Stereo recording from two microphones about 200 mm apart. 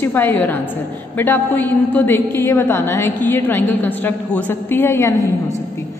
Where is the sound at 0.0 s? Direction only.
10° left (ahead or behind).